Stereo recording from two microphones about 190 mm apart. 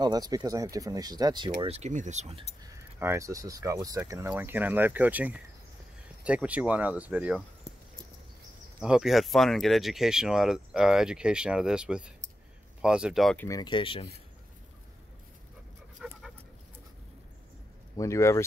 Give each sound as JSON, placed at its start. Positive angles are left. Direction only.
{"t": 0.0, "sound": "speech", "side_deg": -20}
{"t": 2.6, "sound": "speech", "side_deg": -15}
{"t": 8.7, "sound": "speech", "side_deg": -5}
{"t": 13.5, "sound": "speech", "side_deg": 20}
{"t": 16.0, "sound": "dog", "side_deg": -5}
{"t": 17.9, "sound": "speech", "side_deg": 15}